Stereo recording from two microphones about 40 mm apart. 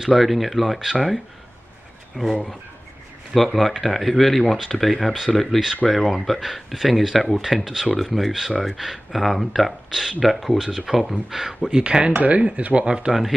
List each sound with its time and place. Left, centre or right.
0.0 s speech: centre
2.1 s speech: centre
3.3 s speech: centre
11.8 s speech: right
12.1 s speech: right
12.8 s speech: centre